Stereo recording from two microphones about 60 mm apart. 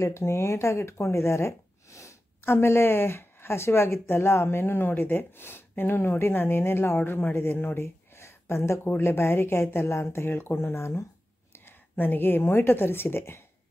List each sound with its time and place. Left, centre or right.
0.0 s speech: left
2.4 s speech: left
11.5 s a woman's voice: left